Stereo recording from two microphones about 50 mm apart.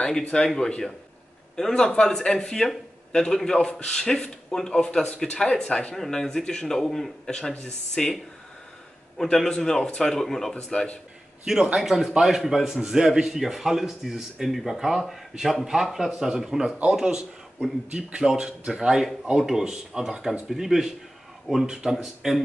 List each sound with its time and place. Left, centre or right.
0.6 s a man's voice: centre
9.2 s a man's voice: centre
10.1 s a man's voice: centre
11.4 s a man's voice: centre